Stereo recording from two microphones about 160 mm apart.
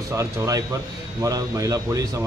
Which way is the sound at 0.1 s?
20° right (ahead or behind).